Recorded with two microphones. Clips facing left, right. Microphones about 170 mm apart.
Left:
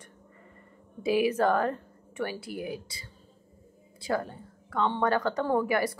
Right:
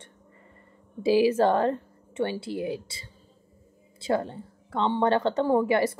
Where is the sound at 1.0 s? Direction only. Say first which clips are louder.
Right 4 dB; 30° right (ahead or behind).